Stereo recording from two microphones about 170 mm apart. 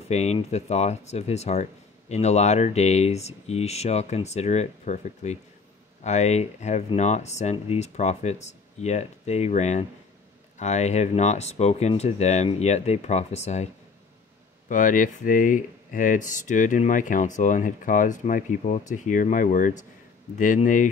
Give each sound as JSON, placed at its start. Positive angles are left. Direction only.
{"t": 0.1, "sound": "speech", "side_deg": 40}
{"t": 14.7, "sound": "speech", "side_deg": 50}